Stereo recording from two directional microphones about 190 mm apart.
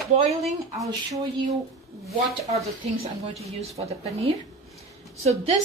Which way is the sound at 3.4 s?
35° right (ahead or behind).